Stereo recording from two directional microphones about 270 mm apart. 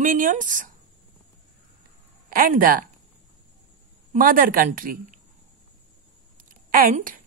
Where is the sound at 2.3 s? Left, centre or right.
Right.